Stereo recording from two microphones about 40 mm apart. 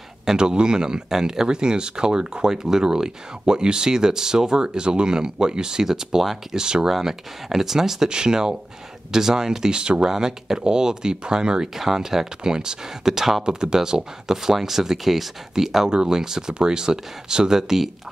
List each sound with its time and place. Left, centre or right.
0.2 s speech: centre